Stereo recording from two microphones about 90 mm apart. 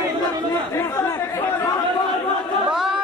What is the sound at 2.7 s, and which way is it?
Chatter, 5° right (ahead or behind).